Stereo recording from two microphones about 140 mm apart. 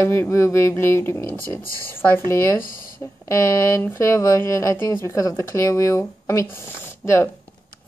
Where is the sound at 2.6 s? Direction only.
85° left.